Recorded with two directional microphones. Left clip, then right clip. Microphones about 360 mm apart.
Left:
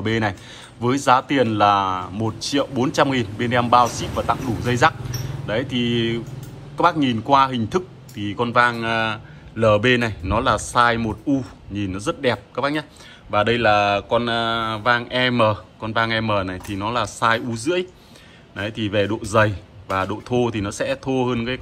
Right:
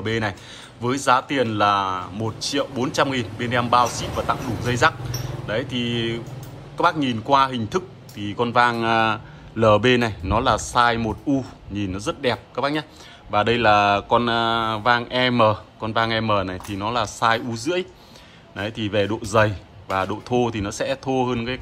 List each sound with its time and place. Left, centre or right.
0.0 s speech: centre